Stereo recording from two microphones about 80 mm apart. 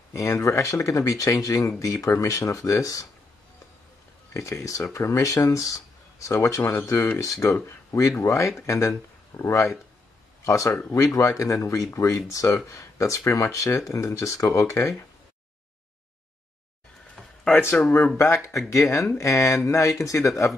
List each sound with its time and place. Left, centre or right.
0.1 s speech: left
4.3 s speech: left
17.6 s speech: left